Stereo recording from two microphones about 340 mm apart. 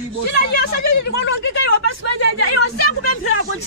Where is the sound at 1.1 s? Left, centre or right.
Left.